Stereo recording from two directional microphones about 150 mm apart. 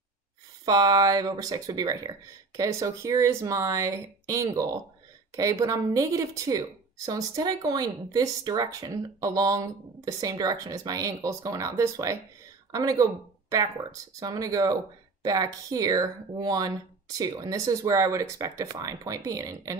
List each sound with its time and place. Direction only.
0.7 s speech: 25° right (ahead or behind)